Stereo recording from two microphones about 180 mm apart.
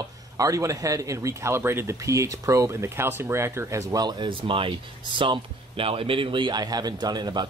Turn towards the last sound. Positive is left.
turn(degrees=-25)  # may be behind; listen again after turning